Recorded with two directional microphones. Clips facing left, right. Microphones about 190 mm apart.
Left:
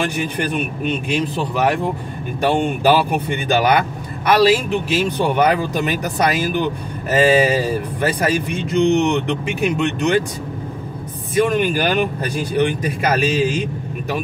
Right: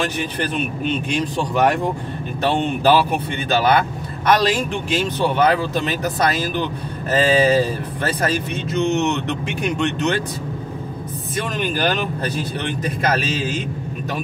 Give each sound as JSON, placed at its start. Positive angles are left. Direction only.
{"t": 0.0, "sound": "speech", "side_deg": 10}
{"t": 11.3, "sound": "speech", "side_deg": 10}